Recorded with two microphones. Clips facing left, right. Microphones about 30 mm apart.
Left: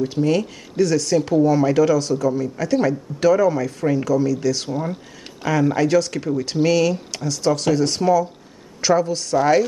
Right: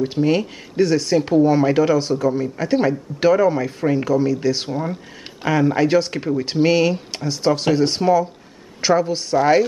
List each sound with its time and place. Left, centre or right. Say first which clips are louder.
0.0 s speech: right 1 dB; right